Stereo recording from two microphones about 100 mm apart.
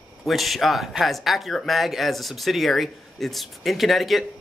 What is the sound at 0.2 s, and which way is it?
Speech, centre (ahead or behind).